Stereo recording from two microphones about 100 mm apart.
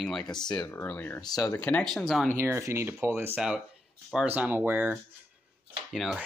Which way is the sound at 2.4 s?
25° right (ahead or behind).